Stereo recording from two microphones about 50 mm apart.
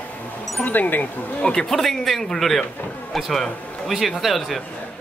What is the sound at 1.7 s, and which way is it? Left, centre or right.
A man's voice, centre.